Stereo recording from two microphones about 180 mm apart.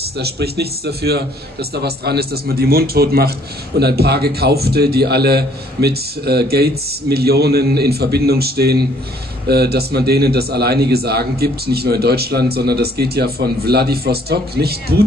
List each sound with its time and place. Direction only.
0.2 s a man's voice: 65° right (ahead or behind)